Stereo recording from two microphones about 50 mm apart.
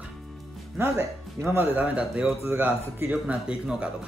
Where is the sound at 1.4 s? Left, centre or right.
Right.